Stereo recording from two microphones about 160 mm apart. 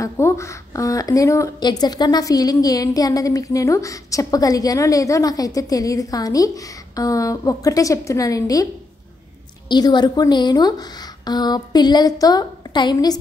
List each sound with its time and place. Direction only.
0.0 s a woman's voice: 20° left (ahead or behind)
9.7 s a woman's voice: 25° left (ahead or behind)